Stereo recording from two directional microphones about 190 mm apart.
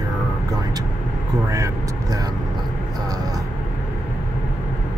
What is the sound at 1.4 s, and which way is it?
Speech, 15° right (ahead or behind).